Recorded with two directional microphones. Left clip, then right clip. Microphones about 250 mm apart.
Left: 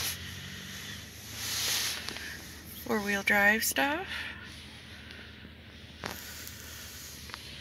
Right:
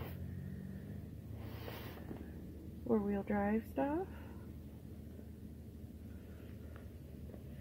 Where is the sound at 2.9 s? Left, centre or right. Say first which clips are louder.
Left 9 dB; centre.